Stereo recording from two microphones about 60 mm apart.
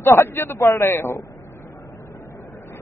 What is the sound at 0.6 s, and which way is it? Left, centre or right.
Speech, left.